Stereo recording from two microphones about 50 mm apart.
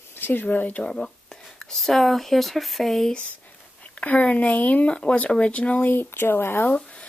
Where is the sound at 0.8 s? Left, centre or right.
Centre.